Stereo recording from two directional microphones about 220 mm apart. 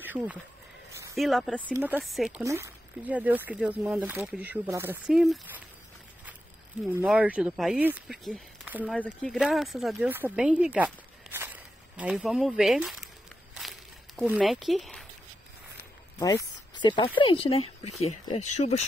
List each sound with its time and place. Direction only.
0.0 s speech: 5° right (ahead or behind)
1.8 s speech: 10° right (ahead or behind)
2.4 s speech: 15° right (ahead or behind)
6.9 s speech: 5° right (ahead or behind)
11.3 s a sound: 10° right (ahead or behind)
16.7 s speech: 20° left (ahead or behind)